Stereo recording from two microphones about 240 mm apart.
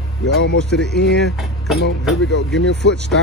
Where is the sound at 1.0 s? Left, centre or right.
Centre.